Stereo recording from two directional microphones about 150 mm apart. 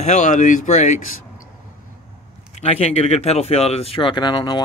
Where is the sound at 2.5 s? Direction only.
45° left (ahead or behind).